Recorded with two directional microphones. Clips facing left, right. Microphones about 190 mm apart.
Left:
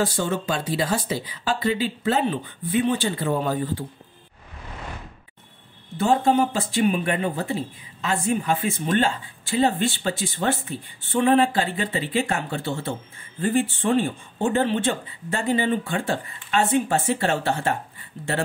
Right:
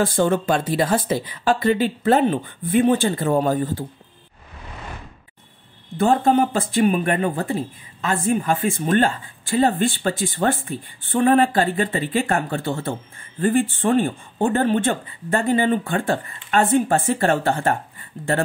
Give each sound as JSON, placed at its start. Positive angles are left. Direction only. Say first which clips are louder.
{"t": 0.0, "sound": "speech", "louder": "right 5 dB", "side_deg": -55}
{"t": 5.9, "sound": "speech", "louder": "right 2 dB", "side_deg": -50}